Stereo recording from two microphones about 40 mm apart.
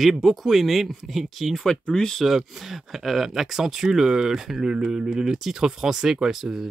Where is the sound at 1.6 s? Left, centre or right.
Centre.